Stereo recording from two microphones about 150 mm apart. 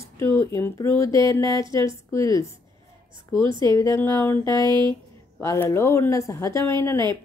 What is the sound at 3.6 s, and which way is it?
Speech, 20° left (ahead or behind).